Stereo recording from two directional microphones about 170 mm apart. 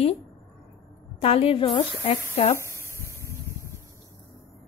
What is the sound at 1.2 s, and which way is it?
A woman's voice, 35° left (ahead or behind).